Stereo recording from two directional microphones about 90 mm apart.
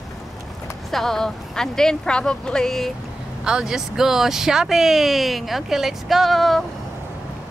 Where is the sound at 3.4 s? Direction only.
5° right (ahead or behind).